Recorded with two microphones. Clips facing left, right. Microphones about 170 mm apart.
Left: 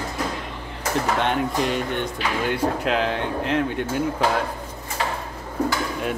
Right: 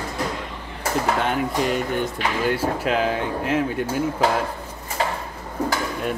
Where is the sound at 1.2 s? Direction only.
Centre (ahead or behind).